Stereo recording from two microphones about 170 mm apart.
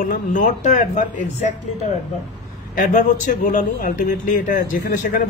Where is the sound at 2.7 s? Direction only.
50° left (ahead or behind).